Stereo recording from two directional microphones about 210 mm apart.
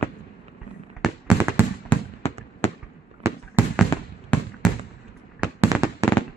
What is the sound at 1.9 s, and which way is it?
Fireworks, 5° left (ahead or behind).